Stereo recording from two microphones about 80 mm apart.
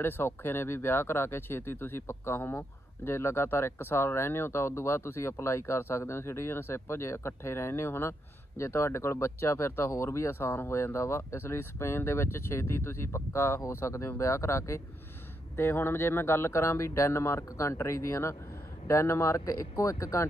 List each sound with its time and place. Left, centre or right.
0.0 s speech: left